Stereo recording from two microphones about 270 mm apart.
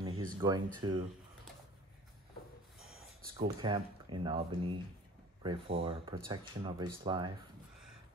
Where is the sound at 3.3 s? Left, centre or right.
Centre.